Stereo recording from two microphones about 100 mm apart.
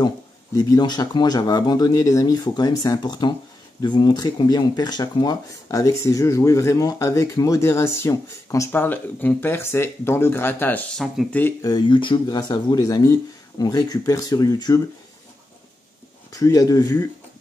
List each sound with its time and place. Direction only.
0.6 s speech: 40° left (ahead or behind)
8.8 s speech: 20° left (ahead or behind)
10.9 s speech: 5° left (ahead or behind)
11.9 s speech: 55° left (ahead or behind); by 14.8 s 35° left (ahead or behind)
16.3 s speech: 35° left (ahead or behind)